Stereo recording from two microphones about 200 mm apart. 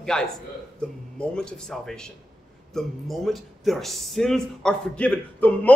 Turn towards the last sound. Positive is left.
turn(degrees=10)  # may be behind; listen again after turning